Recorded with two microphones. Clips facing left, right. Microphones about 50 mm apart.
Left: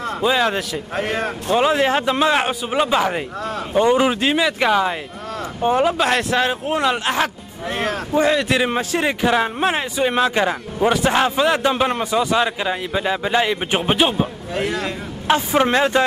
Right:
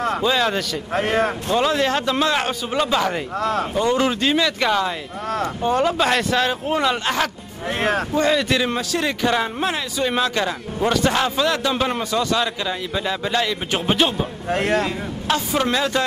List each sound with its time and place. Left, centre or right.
0.2 s speech: centre
0.9 s speech: right
1.5 s a man's voice: centre
8.5 s a man's voice: left
14.5 s speech: right
15.2 s a man's voice: left